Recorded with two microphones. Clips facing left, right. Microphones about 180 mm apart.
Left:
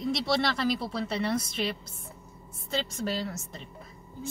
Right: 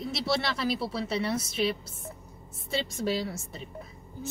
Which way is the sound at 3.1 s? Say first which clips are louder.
Right 2 dB; 5° right (ahead or behind).